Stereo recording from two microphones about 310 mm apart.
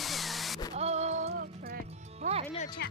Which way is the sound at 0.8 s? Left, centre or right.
Right.